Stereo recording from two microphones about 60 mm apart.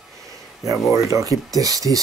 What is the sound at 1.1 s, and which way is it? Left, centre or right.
Speech, right.